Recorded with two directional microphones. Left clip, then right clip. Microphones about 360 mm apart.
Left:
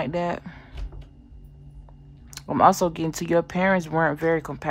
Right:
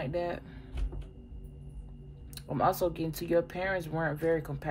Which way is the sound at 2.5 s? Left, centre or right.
Centre.